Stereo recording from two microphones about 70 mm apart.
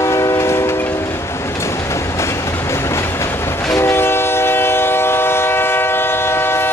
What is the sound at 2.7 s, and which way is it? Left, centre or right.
Train, left.